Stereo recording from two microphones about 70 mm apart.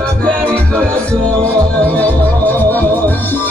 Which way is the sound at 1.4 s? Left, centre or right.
Left.